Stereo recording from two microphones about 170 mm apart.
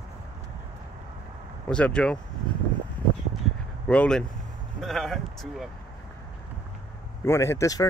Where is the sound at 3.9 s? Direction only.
5° left (ahead or behind).